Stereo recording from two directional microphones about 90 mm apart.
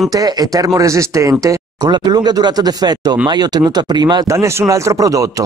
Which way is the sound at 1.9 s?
50° right (ahead or behind).